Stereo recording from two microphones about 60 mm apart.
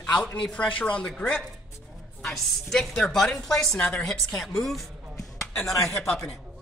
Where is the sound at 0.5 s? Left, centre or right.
Left.